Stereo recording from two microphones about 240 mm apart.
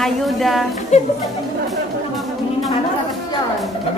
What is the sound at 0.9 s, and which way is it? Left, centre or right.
Speech, left.